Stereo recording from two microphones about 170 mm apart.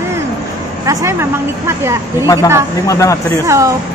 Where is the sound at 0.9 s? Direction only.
15° right (ahead or behind).